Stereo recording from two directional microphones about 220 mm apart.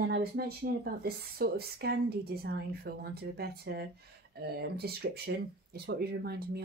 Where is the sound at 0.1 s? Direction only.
45° right (ahead or behind).